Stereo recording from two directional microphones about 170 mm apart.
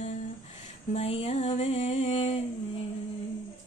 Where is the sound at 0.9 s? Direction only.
40° left (ahead or behind).